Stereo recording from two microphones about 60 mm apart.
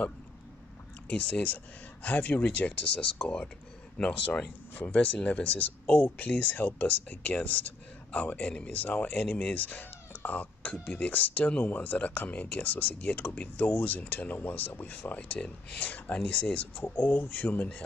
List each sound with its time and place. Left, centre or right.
1.0 s speech: centre